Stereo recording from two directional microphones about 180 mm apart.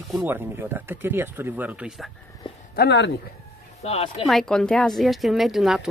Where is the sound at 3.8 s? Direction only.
35° left (ahead or behind).